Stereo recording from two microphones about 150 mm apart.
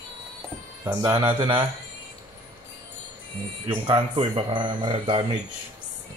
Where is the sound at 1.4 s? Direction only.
30° right (ahead or behind).